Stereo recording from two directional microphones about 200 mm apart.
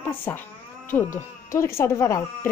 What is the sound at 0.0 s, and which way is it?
Speech, 10° left (ahead or behind).